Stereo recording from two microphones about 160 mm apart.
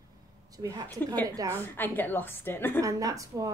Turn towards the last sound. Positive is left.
turn(degrees=-20)  # may be behind; listen again after turning